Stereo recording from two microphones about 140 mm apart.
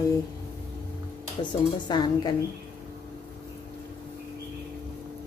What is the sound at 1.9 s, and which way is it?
Speech, 30° left (ahead or behind).